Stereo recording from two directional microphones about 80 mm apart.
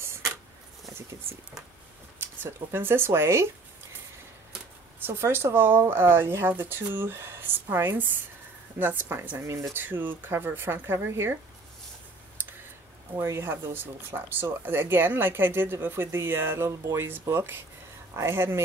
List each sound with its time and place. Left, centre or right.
2.1 s speech: right
5.0 s speech: right
13.2 s speech: right